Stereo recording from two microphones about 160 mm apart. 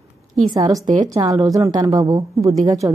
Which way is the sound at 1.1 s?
20° right (ahead or behind).